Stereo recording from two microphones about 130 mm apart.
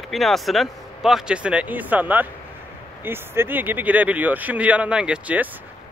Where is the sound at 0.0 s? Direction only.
Centre (ahead or behind).